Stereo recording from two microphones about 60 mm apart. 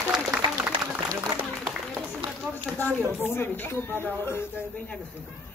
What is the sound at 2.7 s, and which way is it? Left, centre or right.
A man's voice, left.